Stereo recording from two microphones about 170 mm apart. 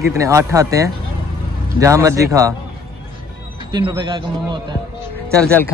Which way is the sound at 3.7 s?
25° right (ahead or behind).